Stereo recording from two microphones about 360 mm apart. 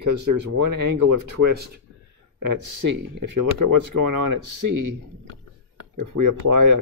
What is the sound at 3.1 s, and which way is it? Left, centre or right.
Speech, right.